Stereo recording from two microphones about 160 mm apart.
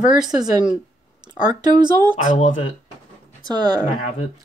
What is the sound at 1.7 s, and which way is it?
Speech, 25° right (ahead or behind).